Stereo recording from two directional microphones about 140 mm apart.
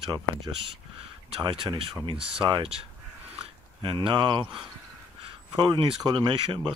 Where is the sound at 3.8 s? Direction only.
35° right (ahead or behind).